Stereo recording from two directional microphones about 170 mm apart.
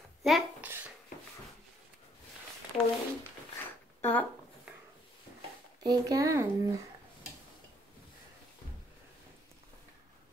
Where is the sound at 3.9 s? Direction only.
10° left (ahead or behind).